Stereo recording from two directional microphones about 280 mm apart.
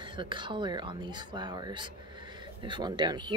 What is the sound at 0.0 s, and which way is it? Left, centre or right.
Speech, centre.